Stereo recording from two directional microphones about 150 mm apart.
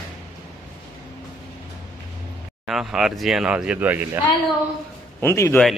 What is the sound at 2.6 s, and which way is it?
Speech, 5° right (ahead or behind).